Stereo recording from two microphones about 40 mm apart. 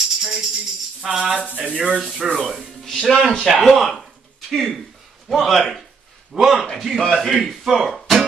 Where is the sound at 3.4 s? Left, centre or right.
Centre.